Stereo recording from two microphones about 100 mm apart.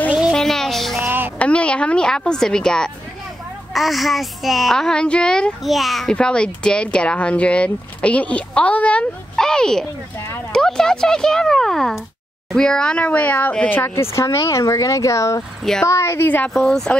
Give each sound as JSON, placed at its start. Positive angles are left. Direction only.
{"t": 0.3, "sound": "music", "side_deg": 5}
{"t": 1.0, "sound": "music", "side_deg": -20}
{"t": 1.4, "sound": "a woman's voice", "side_deg": 10}
{"t": 14.5, "sound": "a woman's voice", "side_deg": 35}
{"t": 16.4, "sound": "a child's voice", "side_deg": 5}